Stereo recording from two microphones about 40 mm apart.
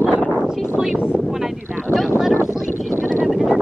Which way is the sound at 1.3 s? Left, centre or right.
Centre.